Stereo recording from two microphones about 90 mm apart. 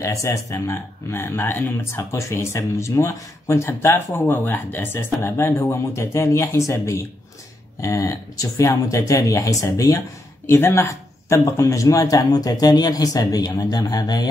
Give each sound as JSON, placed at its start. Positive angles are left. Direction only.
{"t": 0.0, "sound": "speech", "side_deg": 35}